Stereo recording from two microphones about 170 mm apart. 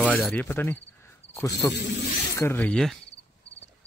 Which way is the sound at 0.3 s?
10° left (ahead or behind).